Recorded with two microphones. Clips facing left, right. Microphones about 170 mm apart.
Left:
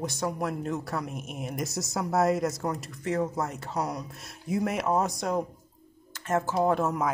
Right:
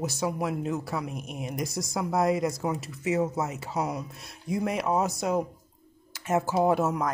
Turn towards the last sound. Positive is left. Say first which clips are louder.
# right 1 dB
turn(degrees=0)  # may be behind; listen again after turning